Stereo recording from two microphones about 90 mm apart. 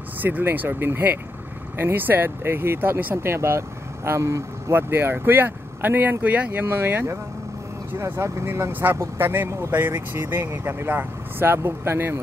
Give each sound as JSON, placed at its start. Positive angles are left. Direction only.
{"t": 0.2, "sound": "speech", "side_deg": -20}